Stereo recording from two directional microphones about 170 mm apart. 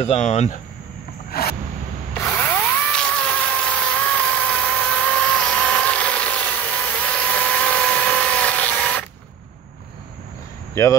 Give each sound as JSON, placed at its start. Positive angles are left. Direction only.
{"t": 0.0, "sound": "speech", "side_deg": 40}
{"t": 1.3, "sound": "a sound", "side_deg": 65}
{"t": 2.1, "sound": "power tool", "side_deg": 10}
{"t": 10.7, "sound": "speech", "side_deg": 20}